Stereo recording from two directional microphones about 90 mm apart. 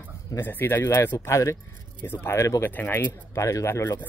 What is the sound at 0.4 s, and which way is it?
Speech, 25° left (ahead or behind).